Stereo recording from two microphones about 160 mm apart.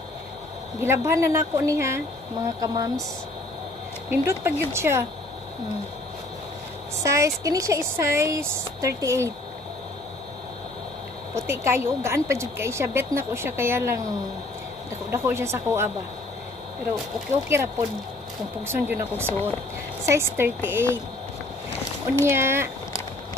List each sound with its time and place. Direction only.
0.7 s speech: 15° right (ahead or behind)
4.1 s speech: 15° right (ahead or behind)
7.0 s speech: 20° right (ahead or behind)
11.3 s speech: 15° right (ahead or behind)
15.0 s speech: 15° right (ahead or behind)
18.7 s speech: 15° right (ahead or behind)
22.2 s speech: 15° right (ahead or behind)